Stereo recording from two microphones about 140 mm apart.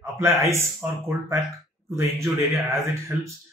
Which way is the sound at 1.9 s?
20° right (ahead or behind).